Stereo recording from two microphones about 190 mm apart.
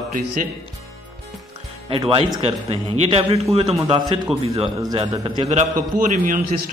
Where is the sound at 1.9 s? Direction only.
30° right (ahead or behind).